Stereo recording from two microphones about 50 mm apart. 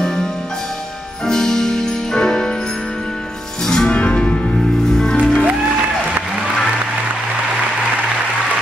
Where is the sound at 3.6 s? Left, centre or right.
Centre.